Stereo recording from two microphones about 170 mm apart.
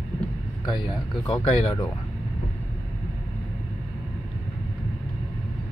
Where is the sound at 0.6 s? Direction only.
25° left (ahead or behind).